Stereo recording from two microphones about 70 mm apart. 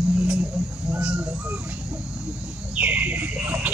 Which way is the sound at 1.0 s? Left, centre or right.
Right.